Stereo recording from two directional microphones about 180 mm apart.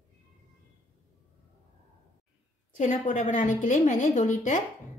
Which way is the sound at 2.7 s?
45° left (ahead or behind).